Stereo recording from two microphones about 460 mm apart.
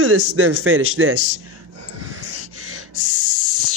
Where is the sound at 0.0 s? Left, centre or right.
Right.